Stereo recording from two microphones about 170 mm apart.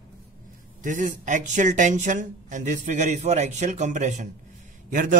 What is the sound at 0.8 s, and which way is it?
Speech, 50° right (ahead or behind).